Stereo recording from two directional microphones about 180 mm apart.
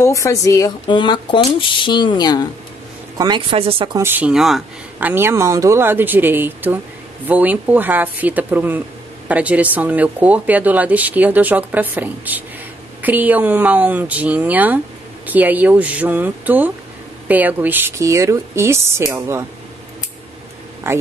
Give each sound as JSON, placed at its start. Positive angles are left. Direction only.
{"t": 0.0, "sound": "speech", "side_deg": 15}
{"t": 3.2, "sound": "speech", "side_deg": -25}
{"t": 4.0, "sound": "speech", "side_deg": -10}
{"t": 5.1, "sound": "speech", "side_deg": -15}
{"t": 20.9, "sound": "speech", "side_deg": -15}